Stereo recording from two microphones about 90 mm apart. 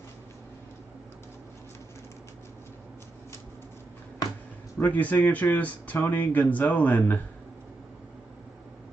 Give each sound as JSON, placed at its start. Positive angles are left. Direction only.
{"t": 4.7, "sound": "speech", "side_deg": 20}